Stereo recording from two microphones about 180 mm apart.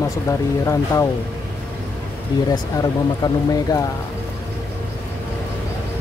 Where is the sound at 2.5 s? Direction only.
20° left (ahead or behind).